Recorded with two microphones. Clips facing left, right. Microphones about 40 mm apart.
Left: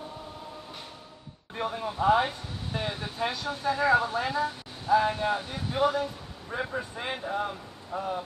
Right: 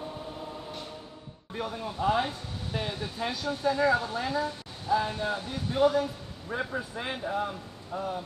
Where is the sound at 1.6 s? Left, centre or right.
Centre.